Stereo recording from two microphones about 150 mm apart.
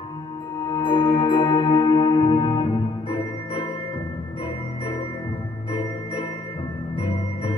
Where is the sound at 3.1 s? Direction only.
30° left (ahead or behind).